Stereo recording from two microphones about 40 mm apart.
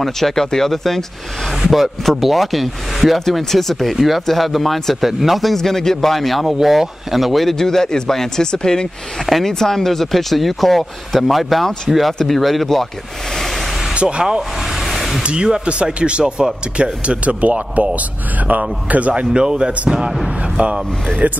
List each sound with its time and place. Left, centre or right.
0.0 s speech: centre
9.2 s speech: centre
14.0 s speech: centre
14.7 s a sound: centre
15.2 s speech: right
19.3 s speech: right
20.5 s speech: right
21.2 s speech: right